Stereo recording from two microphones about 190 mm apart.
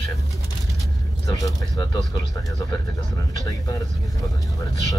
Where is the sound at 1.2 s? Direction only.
20° left (ahead or behind).